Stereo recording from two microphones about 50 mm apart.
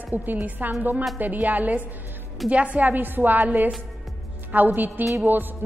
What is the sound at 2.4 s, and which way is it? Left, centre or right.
Speech, centre.